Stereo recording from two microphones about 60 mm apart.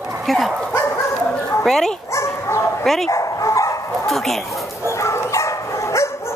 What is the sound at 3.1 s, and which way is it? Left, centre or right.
Dog, left.